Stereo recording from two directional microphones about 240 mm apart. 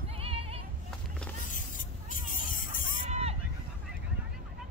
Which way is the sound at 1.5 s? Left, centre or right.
Left.